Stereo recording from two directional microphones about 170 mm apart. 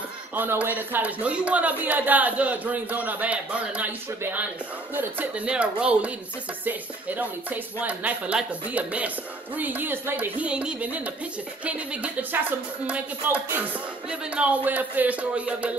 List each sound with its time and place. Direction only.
0.4 s speech: 10° right (ahead or behind)